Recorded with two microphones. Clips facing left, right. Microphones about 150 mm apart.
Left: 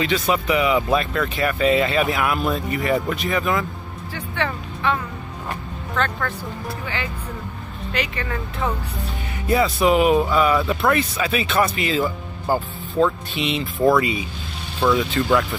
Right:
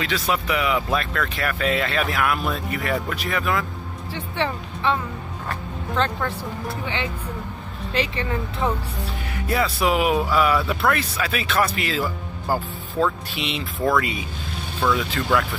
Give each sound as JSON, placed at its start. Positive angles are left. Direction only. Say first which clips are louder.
{"t": 0.0, "sound": "speech", "louder": "left 3 dB", "side_deg": 0}
{"t": 4.1, "sound": "speech", "louder": "even", "side_deg": -25}
{"t": 5.9, "sound": "speech", "louder": "even", "side_deg": -25}
{"t": 7.9, "sound": "speech", "louder": "right 2 dB", "side_deg": -30}
{"t": 9.3, "sound": "speech", "louder": "left 4 dB", "side_deg": 5}
{"t": 9.8, "sound": "speech", "louder": "left 4 dB", "side_deg": -5}
{"t": 10.8, "sound": "speech", "louder": "left 3 dB", "side_deg": 10}